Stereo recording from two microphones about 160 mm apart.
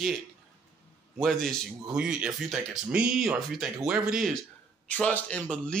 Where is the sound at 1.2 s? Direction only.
Centre (ahead or behind).